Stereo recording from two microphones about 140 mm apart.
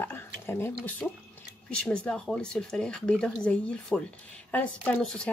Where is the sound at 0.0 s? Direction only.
15° left (ahead or behind).